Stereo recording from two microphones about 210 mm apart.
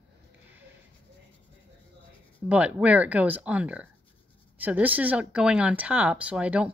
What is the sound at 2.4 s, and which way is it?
Speech, 5° right (ahead or behind).